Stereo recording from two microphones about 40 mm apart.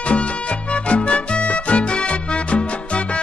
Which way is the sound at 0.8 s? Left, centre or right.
Left.